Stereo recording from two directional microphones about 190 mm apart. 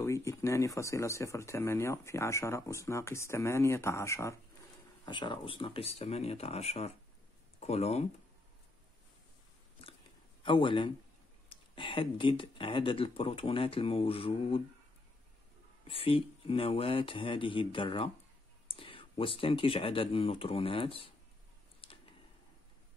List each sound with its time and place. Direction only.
0.0 s speech: 15° left (ahead or behind); by 8.0 s 35° left (ahead or behind)
10.4 s speech: 25° left (ahead or behind)
15.9 s speech: 30° left (ahead or behind)
21.8 s a sound: 30° left (ahead or behind)